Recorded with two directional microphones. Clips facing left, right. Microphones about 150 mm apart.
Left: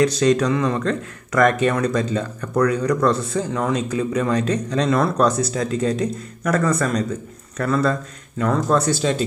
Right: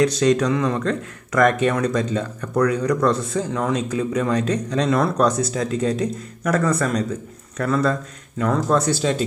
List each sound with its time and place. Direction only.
0.4 s a man's voice: centre (ahead or behind); by 7.1 s 20° right (ahead or behind)
7.5 s speech: 10° right (ahead or behind)